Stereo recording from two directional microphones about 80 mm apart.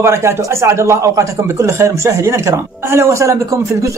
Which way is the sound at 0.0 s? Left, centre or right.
Right.